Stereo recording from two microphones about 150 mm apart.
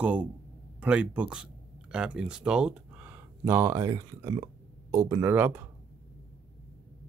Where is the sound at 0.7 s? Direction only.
10° right (ahead or behind); by 5.3 s 25° right (ahead or behind).